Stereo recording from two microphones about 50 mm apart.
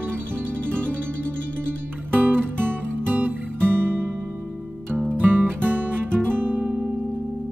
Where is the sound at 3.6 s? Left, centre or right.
Right.